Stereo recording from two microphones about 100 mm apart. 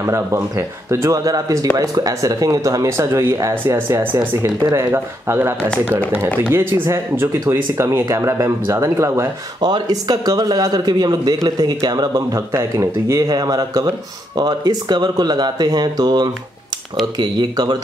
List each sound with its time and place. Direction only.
0.0 s speech: 30° right (ahead or behind)
9.6 s speech: 45° right (ahead or behind)